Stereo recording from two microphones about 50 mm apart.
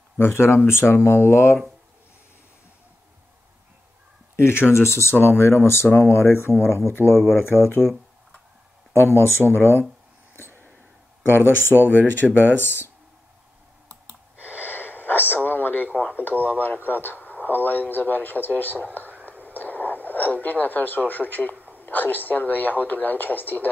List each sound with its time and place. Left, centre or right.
0.2 s speech: left
4.4 s speech: left
7.0 s speech: right
7.3 s speech: left
8.9 s speech: left
11.2 s speech: left
12.2 s speech: centre
12.5 s speech: left
14.5 s radio: left
16.5 s a man's voice: left
19.2 s radio: left
21.5 s a sound: right
21.8 s a man's voice: left